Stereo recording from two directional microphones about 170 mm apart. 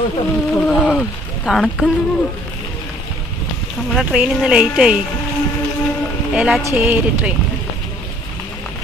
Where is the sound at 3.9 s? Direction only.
5° right (ahead or behind).